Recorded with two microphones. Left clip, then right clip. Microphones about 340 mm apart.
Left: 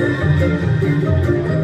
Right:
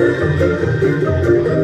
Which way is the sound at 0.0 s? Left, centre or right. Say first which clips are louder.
Right 4 dB; right.